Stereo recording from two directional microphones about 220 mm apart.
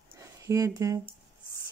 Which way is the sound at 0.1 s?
15° right (ahead or behind).